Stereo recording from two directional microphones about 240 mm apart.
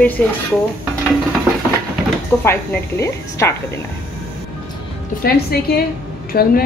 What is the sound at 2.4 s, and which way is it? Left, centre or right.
Speech, centre.